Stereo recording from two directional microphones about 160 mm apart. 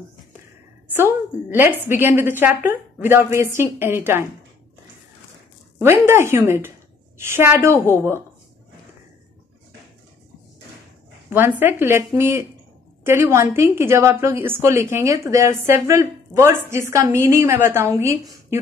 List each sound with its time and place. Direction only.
0.9 s speech: 15° right (ahead or behind)
5.8 s speech: 15° right (ahead or behind)
11.2 s speech: 15° right (ahead or behind)